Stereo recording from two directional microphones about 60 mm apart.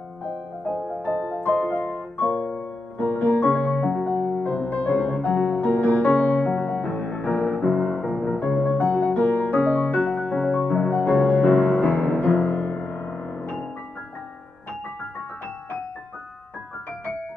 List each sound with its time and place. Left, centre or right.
1.0 s music: left
8.1 s music: centre
8.7 s music: left
10.3 s music: centre